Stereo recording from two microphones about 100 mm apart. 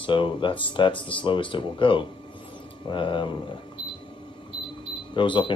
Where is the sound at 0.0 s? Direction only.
55° left (ahead or behind).